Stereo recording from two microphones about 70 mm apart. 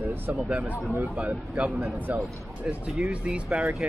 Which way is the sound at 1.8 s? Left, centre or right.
Right.